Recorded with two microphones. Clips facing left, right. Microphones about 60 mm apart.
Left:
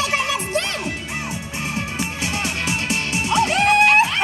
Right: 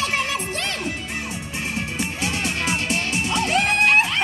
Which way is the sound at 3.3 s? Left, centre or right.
Centre.